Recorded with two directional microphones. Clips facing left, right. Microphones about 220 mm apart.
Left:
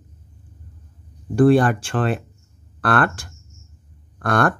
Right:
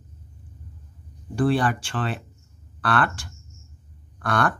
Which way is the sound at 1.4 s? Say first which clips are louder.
Left 7 dB; 50° left (ahead or behind).